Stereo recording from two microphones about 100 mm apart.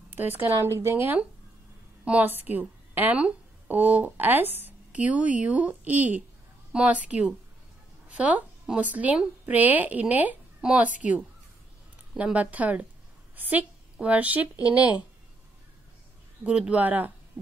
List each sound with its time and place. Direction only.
0.1 s a woman's voice: 20° right (ahead or behind)
16.4 s a woman's voice: 10° right (ahead or behind)